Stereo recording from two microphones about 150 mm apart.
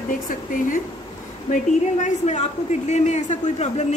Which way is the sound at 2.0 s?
50° left (ahead or behind).